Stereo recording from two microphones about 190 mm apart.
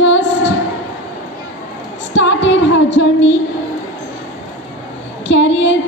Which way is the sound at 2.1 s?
70° left (ahead or behind).